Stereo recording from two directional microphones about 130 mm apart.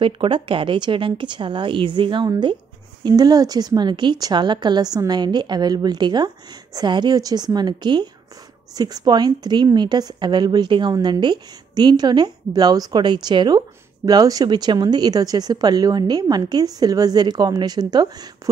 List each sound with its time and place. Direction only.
0.0 s a woman's voice: 40° right (ahead or behind)